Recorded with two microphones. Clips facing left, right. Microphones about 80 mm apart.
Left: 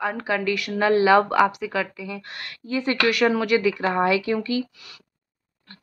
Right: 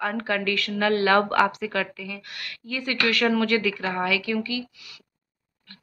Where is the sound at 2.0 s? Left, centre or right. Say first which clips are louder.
Left 3 dB; left.